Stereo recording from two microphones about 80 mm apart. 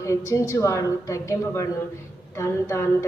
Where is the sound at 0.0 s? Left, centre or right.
Left.